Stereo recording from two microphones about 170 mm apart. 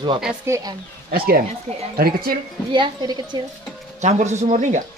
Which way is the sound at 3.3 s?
25° right (ahead or behind).